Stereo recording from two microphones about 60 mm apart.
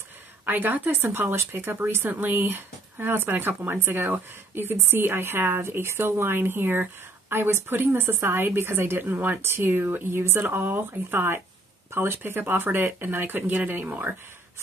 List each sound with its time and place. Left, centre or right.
0.5 s speech: right